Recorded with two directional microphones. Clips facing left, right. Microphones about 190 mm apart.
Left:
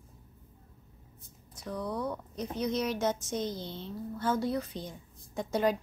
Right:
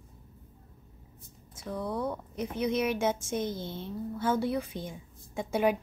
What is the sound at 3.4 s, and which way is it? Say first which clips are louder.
Speech: right 2 dB; 50° right (ahead or behind).